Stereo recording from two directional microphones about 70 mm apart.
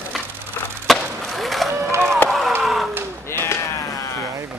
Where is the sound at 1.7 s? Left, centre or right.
Right.